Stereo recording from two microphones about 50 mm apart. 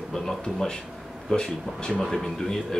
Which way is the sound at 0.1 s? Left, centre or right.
Centre.